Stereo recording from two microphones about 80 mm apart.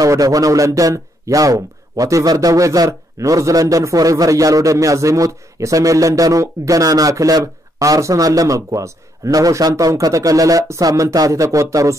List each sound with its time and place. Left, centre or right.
0.0 s speech: right